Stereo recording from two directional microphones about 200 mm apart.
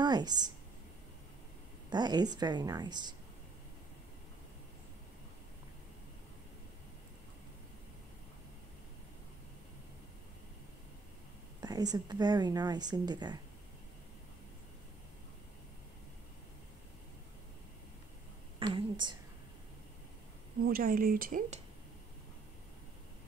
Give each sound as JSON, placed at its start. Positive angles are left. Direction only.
{"t": 0.0, "sound": "speech", "side_deg": -20}
{"t": 1.9, "sound": "speech", "side_deg": -20}
{"t": 11.6, "sound": "speech", "side_deg": -20}
{"t": 18.6, "sound": "speech", "side_deg": -20}
{"t": 20.6, "sound": "speech", "side_deg": -45}